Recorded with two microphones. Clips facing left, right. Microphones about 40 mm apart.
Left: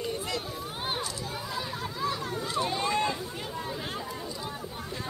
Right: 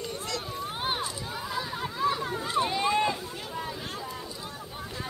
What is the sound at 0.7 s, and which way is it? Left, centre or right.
Chatter, centre.